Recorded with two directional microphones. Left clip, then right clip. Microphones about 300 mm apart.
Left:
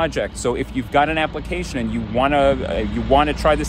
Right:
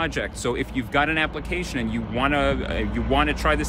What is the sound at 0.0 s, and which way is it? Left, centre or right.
Speech, centre.